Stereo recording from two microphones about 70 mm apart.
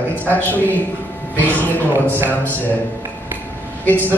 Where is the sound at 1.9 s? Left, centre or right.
Right.